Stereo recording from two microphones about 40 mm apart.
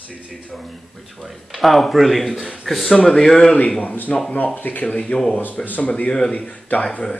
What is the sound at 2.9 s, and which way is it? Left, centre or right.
Speech, centre.